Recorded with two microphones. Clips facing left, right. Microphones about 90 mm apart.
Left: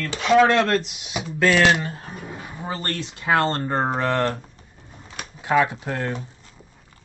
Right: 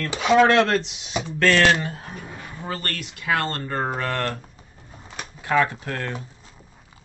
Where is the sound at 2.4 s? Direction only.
15° left (ahead or behind).